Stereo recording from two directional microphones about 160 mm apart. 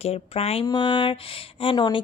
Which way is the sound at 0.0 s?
40° left (ahead or behind).